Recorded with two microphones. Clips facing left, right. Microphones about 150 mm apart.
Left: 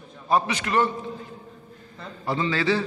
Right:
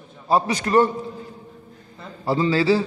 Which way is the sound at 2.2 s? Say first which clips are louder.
Right 5 dB; 35° right (ahead or behind).